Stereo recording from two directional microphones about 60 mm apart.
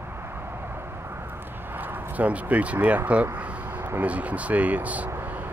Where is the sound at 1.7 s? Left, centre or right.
Right.